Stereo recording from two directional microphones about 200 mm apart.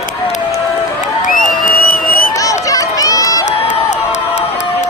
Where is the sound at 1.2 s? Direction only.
40° left (ahead or behind).